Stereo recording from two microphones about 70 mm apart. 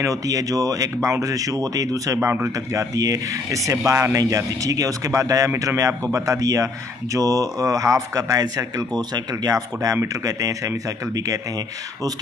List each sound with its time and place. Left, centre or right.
0.0 s speech: right
2.2 s speech: right